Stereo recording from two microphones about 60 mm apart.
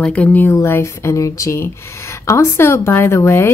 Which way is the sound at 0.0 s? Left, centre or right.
Left.